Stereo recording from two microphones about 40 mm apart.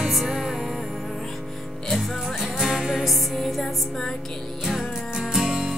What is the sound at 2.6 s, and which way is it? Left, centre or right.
Music, centre.